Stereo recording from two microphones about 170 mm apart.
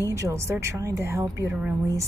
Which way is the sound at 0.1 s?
15° right (ahead or behind).